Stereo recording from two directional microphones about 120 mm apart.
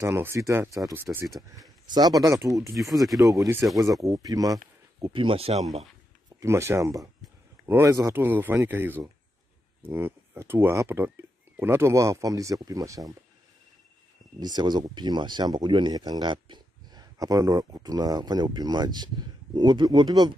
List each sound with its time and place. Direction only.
0.0 s speech: 20° right (ahead or behind)
1.2 s speech: centre (ahead or behind)
1.9 s speech: 35° right (ahead or behind)
2.8 s speech: centre (ahead or behind)
3.2 s speech: 30° right (ahead or behind)
3.6 s speech: centre (ahead or behind)
3.9 s speech: 30° right (ahead or behind)
5.0 s speech: 45° right (ahead or behind)
6.4 s speech: 20° right (ahead or behind)
14.4 s speech: 35° right (ahead or behind)